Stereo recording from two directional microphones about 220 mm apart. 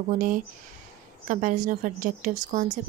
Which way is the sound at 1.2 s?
35° right (ahead or behind).